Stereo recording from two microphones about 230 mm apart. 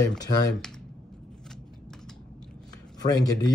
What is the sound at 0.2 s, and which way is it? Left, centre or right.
Speech, centre.